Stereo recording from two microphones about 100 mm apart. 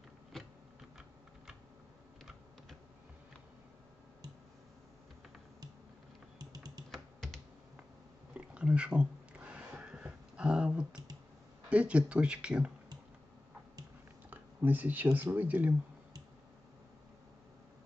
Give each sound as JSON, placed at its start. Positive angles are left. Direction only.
{"t": 6.3, "sound": "typing", "side_deg": -40}
{"t": 6.9, "sound": "computer keyboard", "side_deg": 5}
{"t": 8.4, "sound": "a sound", "side_deg": -10}
{"t": 11.7, "sound": "speech", "side_deg": -10}
{"t": 14.3, "sound": "a sound", "side_deg": -15}
{"t": 15.1, "sound": "speech", "side_deg": -15}